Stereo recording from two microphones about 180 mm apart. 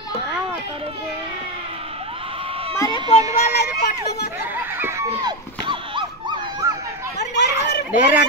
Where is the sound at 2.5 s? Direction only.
30° right (ahead or behind).